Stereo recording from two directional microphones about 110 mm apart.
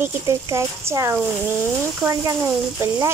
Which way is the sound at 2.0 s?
15° right (ahead or behind).